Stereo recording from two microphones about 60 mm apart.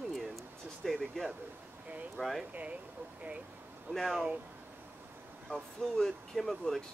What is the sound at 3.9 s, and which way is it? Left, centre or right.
Speech, right.